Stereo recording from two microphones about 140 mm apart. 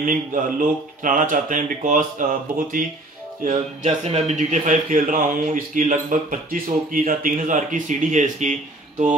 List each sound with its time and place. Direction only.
0.0 s speech: 75° right (ahead or behind)
3.4 s speech: 55° right (ahead or behind)